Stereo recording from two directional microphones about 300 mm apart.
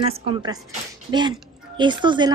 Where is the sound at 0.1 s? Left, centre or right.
Centre.